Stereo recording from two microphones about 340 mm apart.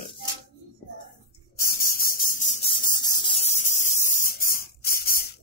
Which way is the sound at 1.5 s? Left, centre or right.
Left.